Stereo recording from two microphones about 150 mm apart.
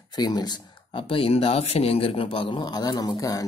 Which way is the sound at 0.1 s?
25° left (ahead or behind).